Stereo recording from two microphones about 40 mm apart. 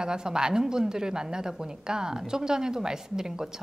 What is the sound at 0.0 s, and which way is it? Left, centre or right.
A woman's voice, centre.